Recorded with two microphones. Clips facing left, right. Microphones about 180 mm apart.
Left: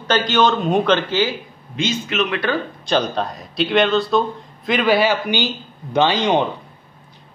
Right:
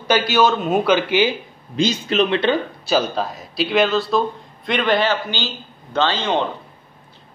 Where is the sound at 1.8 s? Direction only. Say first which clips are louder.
Right 3 dB; 35° right (ahead or behind).